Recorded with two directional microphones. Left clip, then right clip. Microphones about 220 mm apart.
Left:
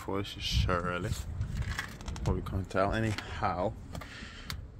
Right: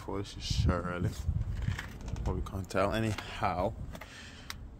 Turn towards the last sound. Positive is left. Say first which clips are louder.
# even
turn(degrees=-20)  # may be behind; listen again after turning